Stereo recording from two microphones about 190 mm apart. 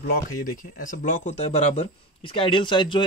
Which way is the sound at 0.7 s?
45° left (ahead or behind).